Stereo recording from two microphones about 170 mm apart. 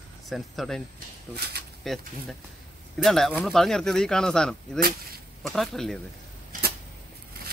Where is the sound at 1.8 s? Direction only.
Centre (ahead or behind).